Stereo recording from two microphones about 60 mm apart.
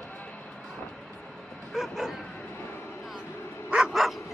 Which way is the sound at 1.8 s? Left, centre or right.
Centre.